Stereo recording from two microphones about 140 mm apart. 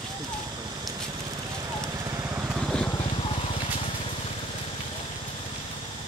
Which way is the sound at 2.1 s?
20° right (ahead or behind).